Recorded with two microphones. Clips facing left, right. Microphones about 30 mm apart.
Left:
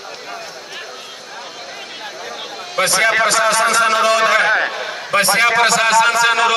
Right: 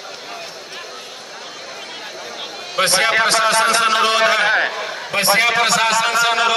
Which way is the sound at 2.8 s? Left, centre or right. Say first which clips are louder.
Left 1 dB; right.